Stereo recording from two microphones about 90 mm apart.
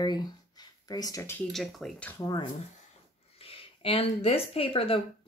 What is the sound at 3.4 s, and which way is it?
Speech, 90° left.